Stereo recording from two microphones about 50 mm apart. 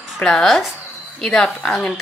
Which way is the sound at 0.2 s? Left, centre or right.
Centre.